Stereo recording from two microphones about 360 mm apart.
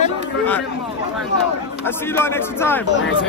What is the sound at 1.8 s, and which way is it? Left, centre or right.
Speech, centre.